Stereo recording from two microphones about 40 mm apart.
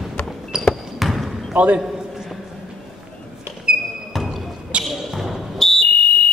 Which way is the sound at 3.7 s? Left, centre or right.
Right.